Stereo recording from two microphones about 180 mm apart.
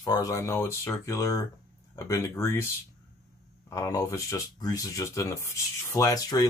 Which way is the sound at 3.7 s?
15° left (ahead or behind).